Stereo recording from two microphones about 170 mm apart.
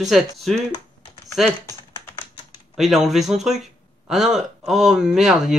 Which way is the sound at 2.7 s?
Centre (ahead or behind).